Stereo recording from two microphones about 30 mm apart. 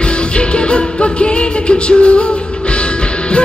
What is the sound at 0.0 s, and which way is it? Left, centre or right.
Music, left.